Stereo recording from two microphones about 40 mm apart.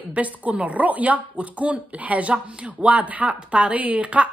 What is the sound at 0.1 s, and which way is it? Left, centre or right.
A woman's voice, right.